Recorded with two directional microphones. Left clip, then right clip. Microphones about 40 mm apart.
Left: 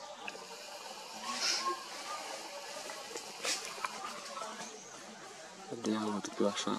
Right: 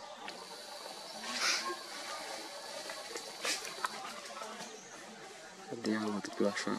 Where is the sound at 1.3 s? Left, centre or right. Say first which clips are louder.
Right 2 dB; right.